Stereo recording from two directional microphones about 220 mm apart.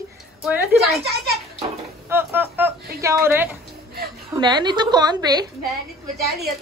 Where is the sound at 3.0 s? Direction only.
15° right (ahead or behind).